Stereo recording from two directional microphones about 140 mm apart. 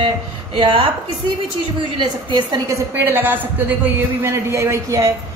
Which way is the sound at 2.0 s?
30° right (ahead or behind).